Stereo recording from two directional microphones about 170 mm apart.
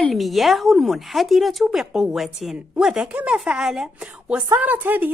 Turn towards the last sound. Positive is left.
turn(degrees=-10)  # may be behind; listen again after turning